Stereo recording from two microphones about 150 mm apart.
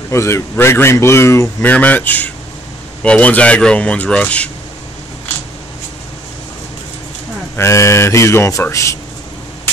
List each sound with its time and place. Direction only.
0.1 s speech: 20° left (ahead or behind)
7.5 s speech: 20° left (ahead or behind)